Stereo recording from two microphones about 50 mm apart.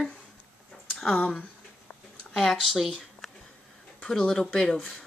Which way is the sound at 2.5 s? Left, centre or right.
Centre.